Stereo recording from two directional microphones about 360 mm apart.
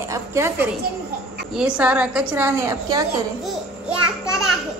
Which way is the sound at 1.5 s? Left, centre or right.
Centre.